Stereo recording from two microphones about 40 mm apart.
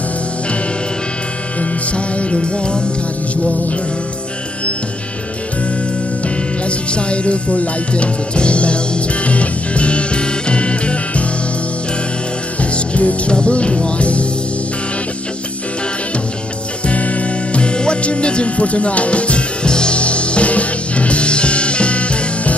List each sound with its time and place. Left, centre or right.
2.1 s speech: left
6.9 s speech: left
9.2 s music: left
12.7 s speech: left
16.8 s music: left
17.6 s music: left